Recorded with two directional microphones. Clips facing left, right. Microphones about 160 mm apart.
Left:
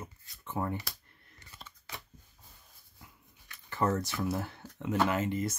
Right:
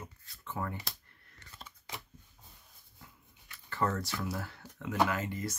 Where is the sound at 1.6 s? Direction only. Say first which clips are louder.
Right 1 dB; 20° right (ahead or behind).